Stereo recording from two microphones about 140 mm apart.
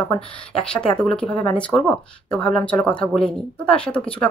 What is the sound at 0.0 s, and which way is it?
Speech, 10° left (ahead or behind).